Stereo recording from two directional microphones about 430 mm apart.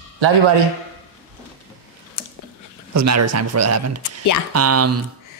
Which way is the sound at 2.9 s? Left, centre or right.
Right.